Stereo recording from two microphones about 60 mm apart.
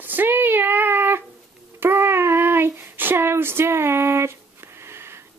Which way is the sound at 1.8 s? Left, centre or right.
Right.